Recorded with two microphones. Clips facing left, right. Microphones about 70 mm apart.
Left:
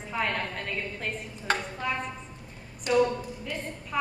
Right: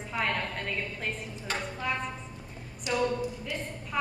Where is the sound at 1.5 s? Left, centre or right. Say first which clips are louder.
Left 6 dB; left.